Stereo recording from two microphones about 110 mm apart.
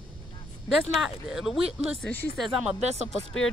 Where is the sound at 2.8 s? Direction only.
85° right.